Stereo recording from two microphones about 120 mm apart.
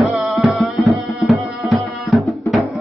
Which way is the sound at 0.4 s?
Centre (ahead or behind).